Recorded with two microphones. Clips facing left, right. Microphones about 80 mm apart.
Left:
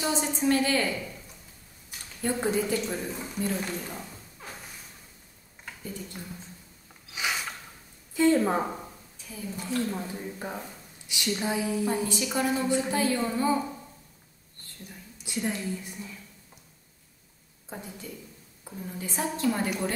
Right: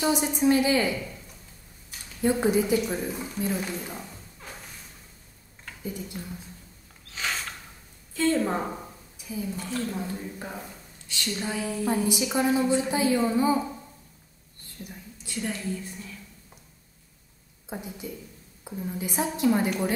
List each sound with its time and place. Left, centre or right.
0.1 s a woman's voice: centre
0.9 s speech: centre
2.2 s a woman's voice: centre
4.4 s thump: centre
5.9 s a woman's voice: centre
7.1 s mechanisms: centre
8.1 s a woman's voice: centre
8.6 s a sound: centre
9.2 s a woman's voice: centre
9.8 s a woman's voice: centre
11.8 s a woman's voice: centre
15.1 s a woman's voice: centre
17.6 s a woman's voice: centre